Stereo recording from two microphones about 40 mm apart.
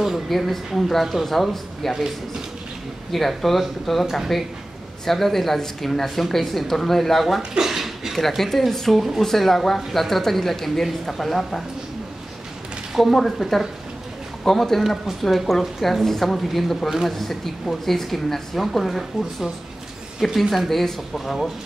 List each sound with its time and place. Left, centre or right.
0.0 s speech: centre
3.1 s speech: centre
7.5 s a sound: centre
8.2 s speech: centre
13.0 s speech: centre
20.4 s speech: centre